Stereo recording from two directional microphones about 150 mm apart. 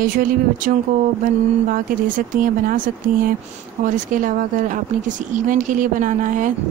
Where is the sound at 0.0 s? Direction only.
70° right (ahead or behind).